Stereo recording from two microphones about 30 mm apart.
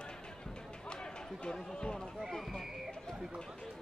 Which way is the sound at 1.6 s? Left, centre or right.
Left.